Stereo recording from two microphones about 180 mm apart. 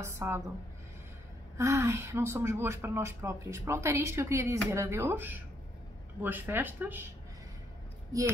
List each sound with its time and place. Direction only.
0.0 s speech: 15° right (ahead or behind)
1.6 s speech: 15° right (ahead or behind)